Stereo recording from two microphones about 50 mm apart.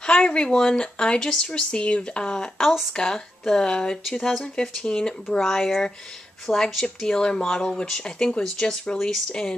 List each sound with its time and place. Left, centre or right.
0.0 s speech: left